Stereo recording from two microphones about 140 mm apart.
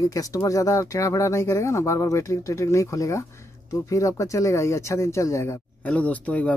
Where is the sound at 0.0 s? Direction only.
25° left (ahead or behind).